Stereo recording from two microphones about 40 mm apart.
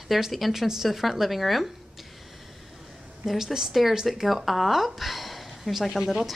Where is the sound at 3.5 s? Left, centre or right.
Centre.